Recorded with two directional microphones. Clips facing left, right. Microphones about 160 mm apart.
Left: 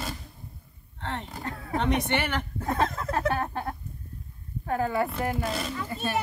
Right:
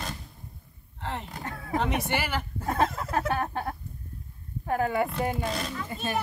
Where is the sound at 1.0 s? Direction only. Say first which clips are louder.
Left 1 dB; 5° right (ahead or behind).